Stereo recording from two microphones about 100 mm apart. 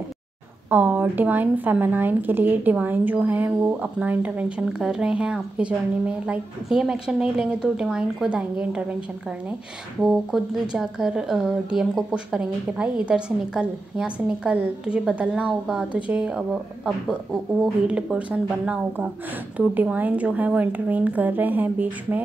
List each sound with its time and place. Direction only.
0.7 s speech: 15° right (ahead or behind)
10.0 s speech: 5° right (ahead or behind)